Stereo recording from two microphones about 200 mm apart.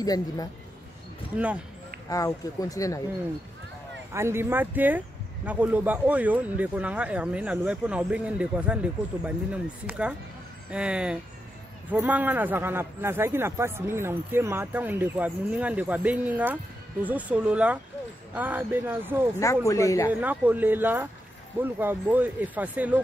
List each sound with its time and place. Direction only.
0.0 s speech: 20° left (ahead or behind)
2.0 s speech: 15° left (ahead or behind)
4.1 s speech: 15° right (ahead or behind)
19.4 s speech: 15° left (ahead or behind)
20.1 s speech: 10° right (ahead or behind)